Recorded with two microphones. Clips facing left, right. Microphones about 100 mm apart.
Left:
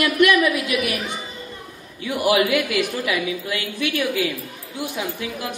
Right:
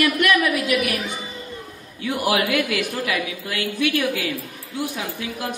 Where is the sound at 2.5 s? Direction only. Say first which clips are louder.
Left 1 dB; 15° left (ahead or behind).